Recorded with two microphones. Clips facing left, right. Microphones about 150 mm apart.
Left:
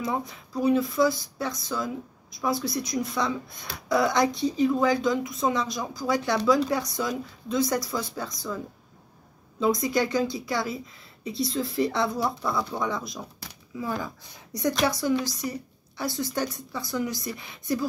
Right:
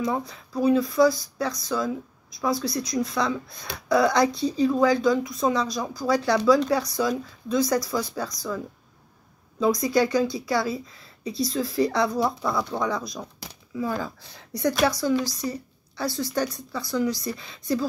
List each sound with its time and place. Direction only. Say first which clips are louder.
0.1 s speech: right 2 dB; 20° left (ahead or behind)
9.6 s speech: right 3 dB; 25° left (ahead or behind)
12.4 s speech: right 2 dB; centre (ahead or behind)
12.8 s speech: right 2 dB; 25° left (ahead or behind)